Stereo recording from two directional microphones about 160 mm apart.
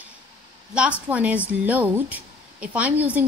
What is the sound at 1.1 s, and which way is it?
A woman's voice, 10° right (ahead or behind).